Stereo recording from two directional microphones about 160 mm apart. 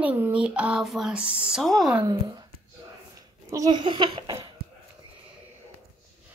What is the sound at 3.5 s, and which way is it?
Speech, 25° right (ahead or behind).